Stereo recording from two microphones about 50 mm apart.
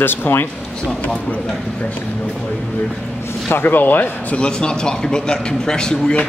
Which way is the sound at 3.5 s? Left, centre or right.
Left.